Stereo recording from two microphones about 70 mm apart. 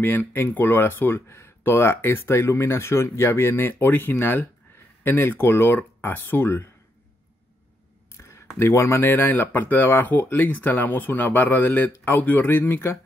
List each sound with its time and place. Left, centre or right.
0.0 s speech: left
8.2 s speech: left